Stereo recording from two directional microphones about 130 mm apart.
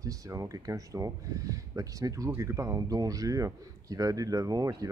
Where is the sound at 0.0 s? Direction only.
25° right (ahead or behind).